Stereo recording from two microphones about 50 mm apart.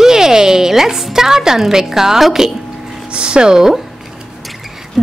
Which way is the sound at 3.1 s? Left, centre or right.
Centre.